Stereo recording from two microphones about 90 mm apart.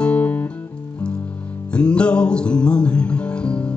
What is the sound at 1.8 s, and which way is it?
Music, 10° left (ahead or behind).